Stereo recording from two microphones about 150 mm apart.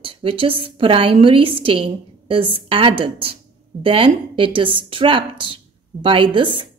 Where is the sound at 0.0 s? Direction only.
35° right (ahead or behind).